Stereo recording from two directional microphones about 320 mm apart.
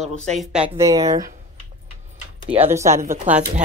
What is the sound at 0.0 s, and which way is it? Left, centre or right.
Speech, centre.